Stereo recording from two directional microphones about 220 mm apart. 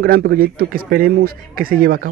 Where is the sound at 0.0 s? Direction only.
40° right (ahead or behind).